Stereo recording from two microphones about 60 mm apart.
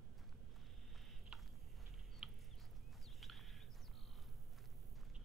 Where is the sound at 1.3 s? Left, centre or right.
Centre.